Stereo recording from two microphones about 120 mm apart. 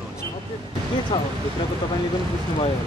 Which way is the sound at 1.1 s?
40° left (ahead or behind).